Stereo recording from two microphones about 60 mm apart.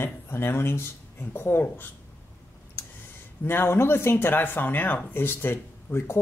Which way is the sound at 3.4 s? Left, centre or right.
Left.